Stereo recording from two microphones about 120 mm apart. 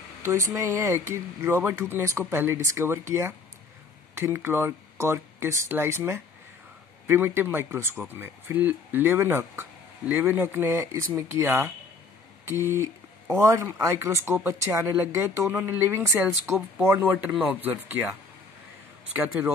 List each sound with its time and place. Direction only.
0.2 s speech: 25° right (ahead or behind)
19.1 s speech: 15° right (ahead or behind)